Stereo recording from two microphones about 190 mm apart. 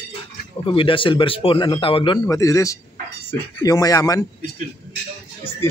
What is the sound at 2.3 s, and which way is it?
Speech, 15° left (ahead or behind).